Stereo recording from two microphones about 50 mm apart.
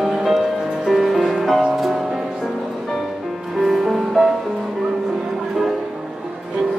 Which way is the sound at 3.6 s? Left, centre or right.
Centre.